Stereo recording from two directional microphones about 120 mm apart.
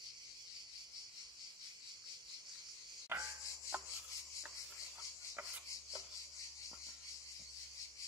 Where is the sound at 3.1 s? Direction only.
20° right (ahead or behind).